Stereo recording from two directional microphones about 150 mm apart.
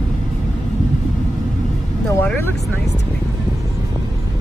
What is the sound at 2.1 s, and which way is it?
Vehicle, 15° left (ahead or behind).